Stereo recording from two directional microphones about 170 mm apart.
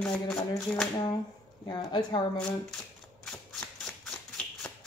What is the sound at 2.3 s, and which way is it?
Speech, 5° left (ahead or behind).